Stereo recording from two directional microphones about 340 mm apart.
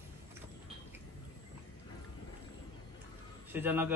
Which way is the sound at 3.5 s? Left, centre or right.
Centre.